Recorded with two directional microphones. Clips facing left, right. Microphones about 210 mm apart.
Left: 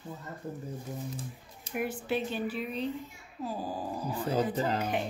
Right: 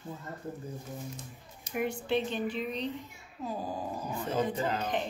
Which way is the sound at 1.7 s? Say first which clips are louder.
Right 1 dB; 5° left (ahead or behind).